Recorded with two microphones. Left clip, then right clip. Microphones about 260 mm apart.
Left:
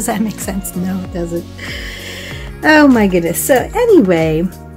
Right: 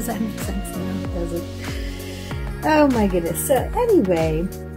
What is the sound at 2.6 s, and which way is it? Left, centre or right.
Speech, centre.